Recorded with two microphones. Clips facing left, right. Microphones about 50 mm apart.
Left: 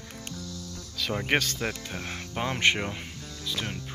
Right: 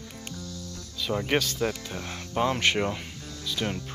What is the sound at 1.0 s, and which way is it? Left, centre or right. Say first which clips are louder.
Music: right 1 dB; left.